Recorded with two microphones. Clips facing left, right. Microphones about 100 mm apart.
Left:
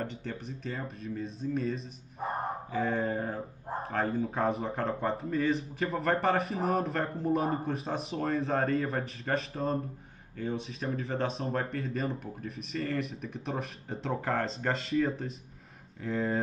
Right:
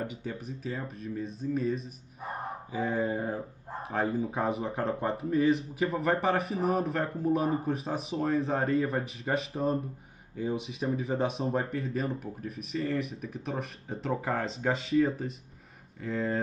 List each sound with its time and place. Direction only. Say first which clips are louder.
0.0 s speech: right 1 dB; 5° right (ahead or behind)
2.1 s speech: left 4 dB; 30° left (ahead or behind)
2.7 s speech: right 1 dB; 5° right (ahead or behind)